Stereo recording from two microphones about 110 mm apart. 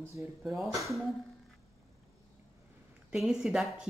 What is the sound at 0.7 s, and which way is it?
Speech, centre (ahead or behind).